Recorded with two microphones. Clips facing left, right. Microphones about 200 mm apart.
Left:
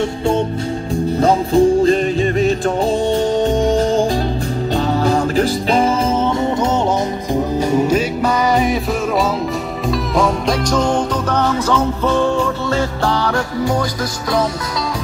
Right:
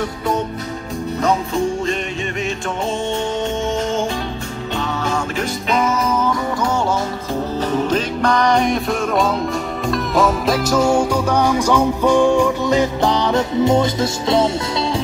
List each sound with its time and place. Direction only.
1.2 s music: 35° left (ahead or behind)
3.3 s music: 35° left (ahead or behind)
7.7 s music: 10° left (ahead or behind)
9.8 s music: centre (ahead or behind); by 13.8 s 20° right (ahead or behind)